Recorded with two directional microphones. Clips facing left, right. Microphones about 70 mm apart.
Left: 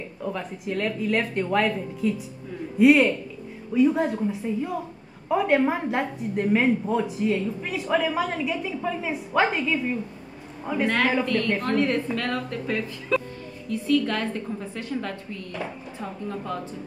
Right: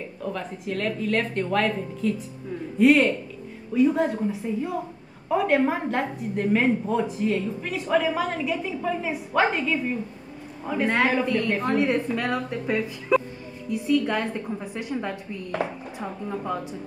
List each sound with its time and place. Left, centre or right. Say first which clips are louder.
0.2 s a woman's voice: left 1 dB; centre
10.9 s a woman's voice: right 1 dB; centre